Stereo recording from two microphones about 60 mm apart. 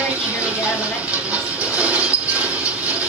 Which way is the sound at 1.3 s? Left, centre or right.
Right.